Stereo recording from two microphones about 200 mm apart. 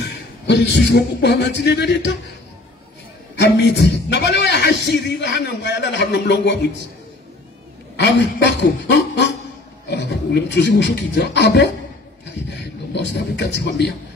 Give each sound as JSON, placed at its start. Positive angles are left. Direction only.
{"t": 0.0, "sound": "speech", "side_deg": 60}
{"t": 3.3, "sound": "a man's voice", "side_deg": 60}
{"t": 7.9, "sound": "a man's voice", "side_deg": 60}